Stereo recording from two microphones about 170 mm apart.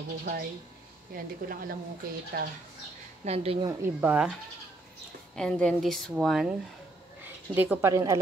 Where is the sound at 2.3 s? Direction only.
65° right (ahead or behind).